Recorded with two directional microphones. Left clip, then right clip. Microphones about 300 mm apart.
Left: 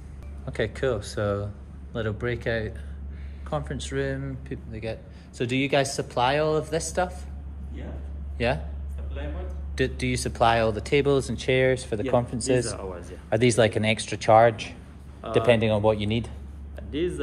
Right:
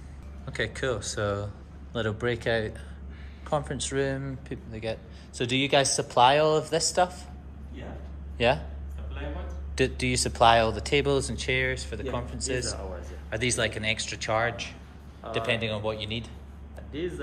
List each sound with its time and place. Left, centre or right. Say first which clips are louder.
0.5 s speech: left 3 dB; centre
8.4 s speech: right 2 dB; centre
9.8 s speech: right 1 dB; centre